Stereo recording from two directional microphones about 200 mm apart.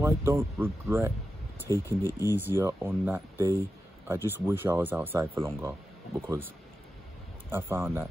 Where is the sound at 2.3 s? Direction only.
10° right (ahead or behind).